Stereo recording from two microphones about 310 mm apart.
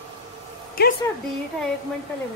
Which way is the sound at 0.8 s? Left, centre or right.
Left.